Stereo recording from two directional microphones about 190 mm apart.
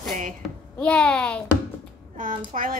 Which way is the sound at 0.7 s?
5° left (ahead or behind).